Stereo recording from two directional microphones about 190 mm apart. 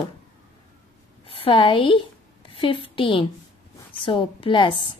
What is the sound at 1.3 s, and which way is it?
A woman's voice, 30° left (ahead or behind).